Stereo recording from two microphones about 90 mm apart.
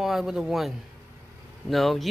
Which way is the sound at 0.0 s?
5° right (ahead or behind).